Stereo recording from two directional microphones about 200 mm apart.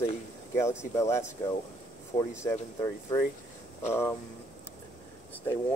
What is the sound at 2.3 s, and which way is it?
Speech, 15° left (ahead or behind).